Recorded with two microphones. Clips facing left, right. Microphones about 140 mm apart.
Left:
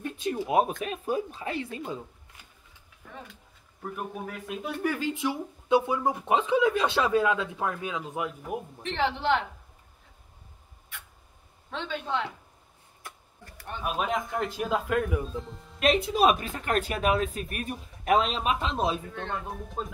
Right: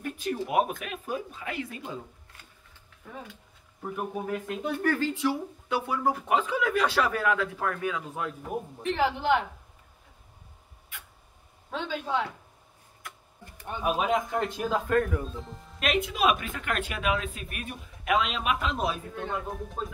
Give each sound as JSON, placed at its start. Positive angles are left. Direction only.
{"t": 0.0, "sound": "speech", "side_deg": 25}
{"t": 3.8, "sound": "speech", "side_deg": 0}
{"t": 4.8, "sound": "speech", "side_deg": 15}
{"t": 8.8, "sound": "speech", "side_deg": -5}
{"t": 11.7, "sound": "speech", "side_deg": -5}
{"t": 13.6, "sound": "speech", "side_deg": -10}
{"t": 15.8, "sound": "speech", "side_deg": 30}
{"t": 19.1, "sound": "speech", "side_deg": -5}